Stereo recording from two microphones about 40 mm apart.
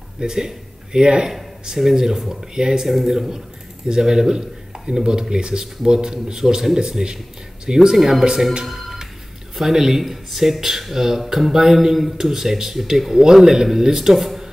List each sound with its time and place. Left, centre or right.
0.2 s speech: centre
1.3 s speech: centre
8.6 s telephone: centre
9.6 s speech: centre